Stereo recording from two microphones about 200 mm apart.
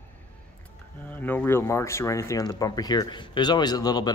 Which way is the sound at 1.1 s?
10° left (ahead or behind).